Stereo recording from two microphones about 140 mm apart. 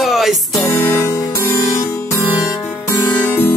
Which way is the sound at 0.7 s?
20° left (ahead or behind).